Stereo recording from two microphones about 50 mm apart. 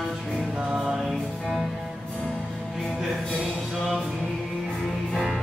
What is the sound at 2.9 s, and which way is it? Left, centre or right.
Music, centre.